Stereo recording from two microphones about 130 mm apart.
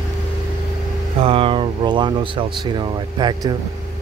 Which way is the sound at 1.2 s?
45° right (ahead or behind).